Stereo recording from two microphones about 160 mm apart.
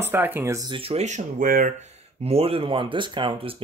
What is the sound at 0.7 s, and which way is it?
Speech, 35° right (ahead or behind).